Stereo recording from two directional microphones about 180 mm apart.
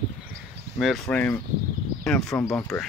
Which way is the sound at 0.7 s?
Centre (ahead or behind).